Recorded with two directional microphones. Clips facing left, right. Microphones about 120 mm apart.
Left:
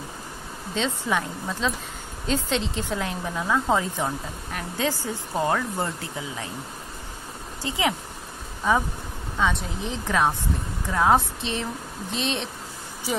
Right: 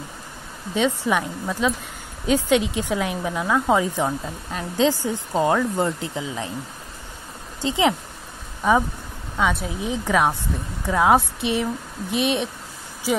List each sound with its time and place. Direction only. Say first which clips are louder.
0.7 s speech: right 5 dB; 15° right (ahead or behind)
7.6 s speech: right 6 dB; 25° right (ahead or behind)
9.4 s speech: right 3 dB; 5° right (ahead or behind)